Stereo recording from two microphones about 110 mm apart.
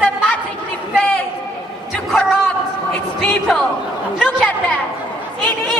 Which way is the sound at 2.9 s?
10° left (ahead or behind).